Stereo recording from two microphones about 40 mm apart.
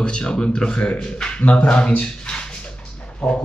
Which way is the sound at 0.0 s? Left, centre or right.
Left.